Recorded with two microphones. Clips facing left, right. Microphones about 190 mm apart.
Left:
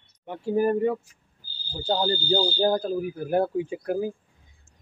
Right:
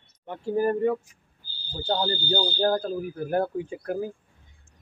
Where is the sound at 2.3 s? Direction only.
10° left (ahead or behind).